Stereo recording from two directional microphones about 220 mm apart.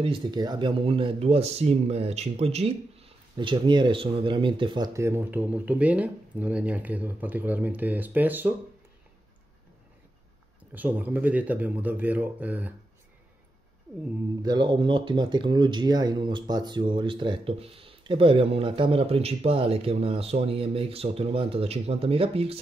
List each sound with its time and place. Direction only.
0.0 s speech: 20° right (ahead or behind)
10.7 s speech: 5° right (ahead or behind)
14.4 s speech: 20° right (ahead or behind)